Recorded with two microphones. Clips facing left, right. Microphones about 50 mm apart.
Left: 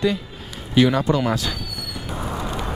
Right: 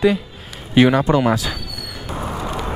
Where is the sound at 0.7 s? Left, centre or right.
Right.